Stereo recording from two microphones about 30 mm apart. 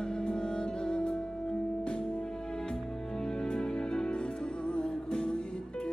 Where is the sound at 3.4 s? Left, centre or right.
Left.